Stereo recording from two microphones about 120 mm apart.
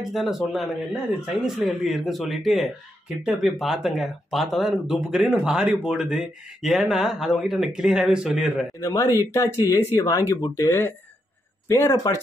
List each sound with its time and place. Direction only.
0.1 s speech: centre (ahead or behind)
8.8 s speech: 30° left (ahead or behind)